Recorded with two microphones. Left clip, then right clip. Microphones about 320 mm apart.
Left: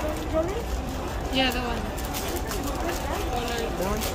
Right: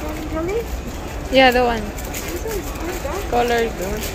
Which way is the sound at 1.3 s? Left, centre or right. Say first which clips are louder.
Right 13 dB; centre.